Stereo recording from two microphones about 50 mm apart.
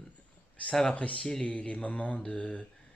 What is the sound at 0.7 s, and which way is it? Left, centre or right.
Speech, centre.